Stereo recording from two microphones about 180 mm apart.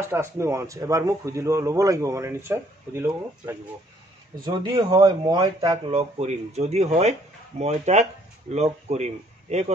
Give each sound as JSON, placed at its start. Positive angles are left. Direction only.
{"t": 0.0, "sound": "speech", "side_deg": -15}